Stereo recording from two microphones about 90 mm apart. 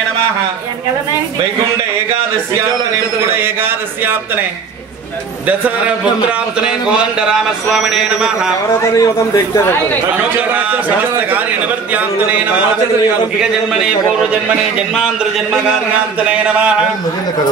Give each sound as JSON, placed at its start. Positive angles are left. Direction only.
{"t": 3.3, "sound": "a man's voice", "side_deg": -25}
{"t": 7.2, "sound": "a man's voice", "side_deg": -10}
{"t": 8.8, "sound": "a man's voice", "side_deg": 40}
{"t": 10.5, "sound": "a man's voice", "side_deg": -20}
{"t": 16.3, "sound": "a man's voice", "side_deg": -15}